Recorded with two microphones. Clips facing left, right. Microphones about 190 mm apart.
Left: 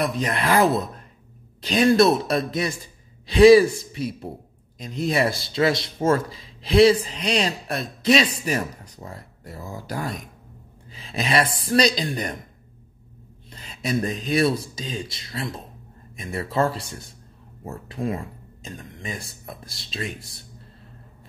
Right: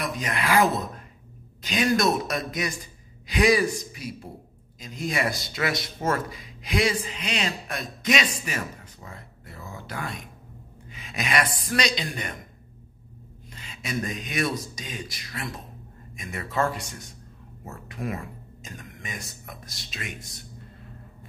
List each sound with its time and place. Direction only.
0.0 s speech: 30° left (ahead or behind)
13.5 s speech: 35° left (ahead or behind)